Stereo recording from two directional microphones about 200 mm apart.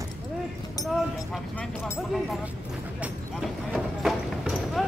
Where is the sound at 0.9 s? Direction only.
Centre (ahead or behind).